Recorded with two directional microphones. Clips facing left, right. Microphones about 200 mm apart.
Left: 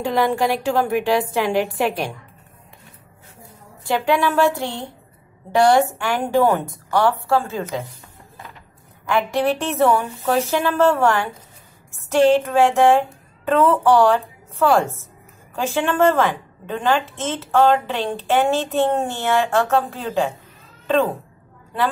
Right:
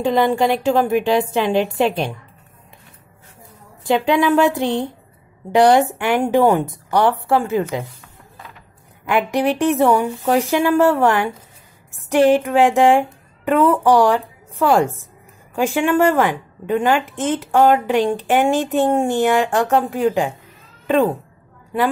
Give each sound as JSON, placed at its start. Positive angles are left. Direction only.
{"t": 0.0, "sound": "a woman's voice", "side_deg": -20}
{"t": 3.8, "sound": "a woman's voice", "side_deg": -20}
{"t": 9.1, "sound": "a woman's voice", "side_deg": -15}